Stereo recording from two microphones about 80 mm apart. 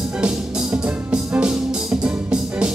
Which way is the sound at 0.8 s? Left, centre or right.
Centre.